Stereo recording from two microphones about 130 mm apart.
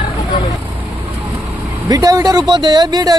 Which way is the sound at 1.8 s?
30° right (ahead or behind).